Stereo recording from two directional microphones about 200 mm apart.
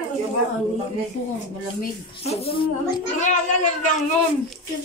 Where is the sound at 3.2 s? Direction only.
40° left (ahead or behind).